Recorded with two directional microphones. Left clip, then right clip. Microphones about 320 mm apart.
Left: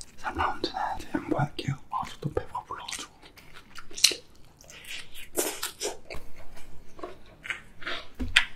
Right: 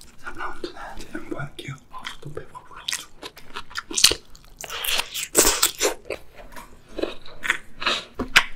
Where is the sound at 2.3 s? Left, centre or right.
Left.